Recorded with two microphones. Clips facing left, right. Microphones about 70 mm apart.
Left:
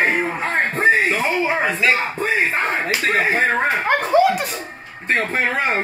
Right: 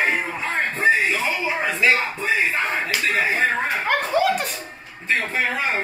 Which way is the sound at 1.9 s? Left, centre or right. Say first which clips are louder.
Left 2 dB; left.